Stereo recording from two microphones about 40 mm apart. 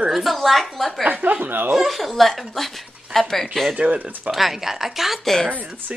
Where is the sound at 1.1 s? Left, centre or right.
Right.